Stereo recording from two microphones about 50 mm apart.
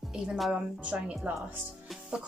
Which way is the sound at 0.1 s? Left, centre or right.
Centre.